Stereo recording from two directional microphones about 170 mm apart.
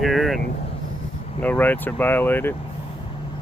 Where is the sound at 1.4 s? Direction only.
10° left (ahead or behind).